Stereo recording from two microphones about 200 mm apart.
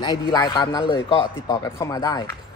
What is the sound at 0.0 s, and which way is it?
A man's voice, 20° left (ahead or behind).